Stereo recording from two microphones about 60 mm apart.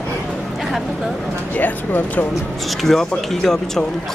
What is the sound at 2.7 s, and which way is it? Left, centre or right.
Speech, centre.